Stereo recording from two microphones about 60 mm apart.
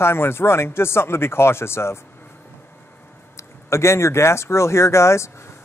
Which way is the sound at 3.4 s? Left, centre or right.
Left.